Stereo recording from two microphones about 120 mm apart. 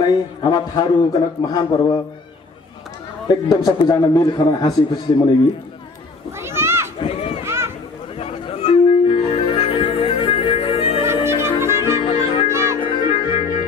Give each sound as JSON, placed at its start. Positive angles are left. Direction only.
{"t": 0.0, "sound": "a man's voice", "side_deg": 35}
{"t": 3.3, "sound": "a man's voice", "side_deg": 35}
{"t": 6.4, "sound": "a sound", "side_deg": -20}
{"t": 7.0, "sound": "run", "side_deg": 55}
{"t": 7.4, "sound": "a sound", "side_deg": -20}
{"t": 8.2, "sound": "music", "side_deg": 55}
{"t": 11.2, "sound": "music", "side_deg": -20}
{"t": 12.0, "sound": "music", "side_deg": 50}
{"t": 12.4, "sound": "music", "side_deg": -25}
{"t": 12.8, "sound": "music", "side_deg": 50}